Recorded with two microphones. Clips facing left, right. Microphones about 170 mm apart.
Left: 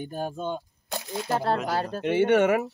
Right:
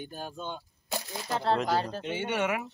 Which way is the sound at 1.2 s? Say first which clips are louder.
Left 2 dB; 55° left (ahead or behind).